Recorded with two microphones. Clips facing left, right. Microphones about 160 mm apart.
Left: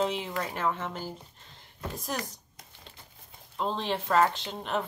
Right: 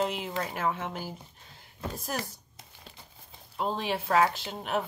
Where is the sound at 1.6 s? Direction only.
5° right (ahead or behind).